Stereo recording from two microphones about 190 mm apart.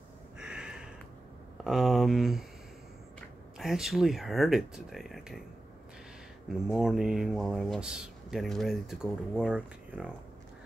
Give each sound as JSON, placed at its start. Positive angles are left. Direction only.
{"t": 0.4, "sound": "a sound", "side_deg": -5}
{"t": 1.6, "sound": "speech", "side_deg": 0}
{"t": 3.5, "sound": "speech", "side_deg": 0}
{"t": 6.7, "sound": "speech", "side_deg": 0}